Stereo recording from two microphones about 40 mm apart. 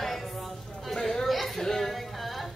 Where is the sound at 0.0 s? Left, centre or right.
Centre.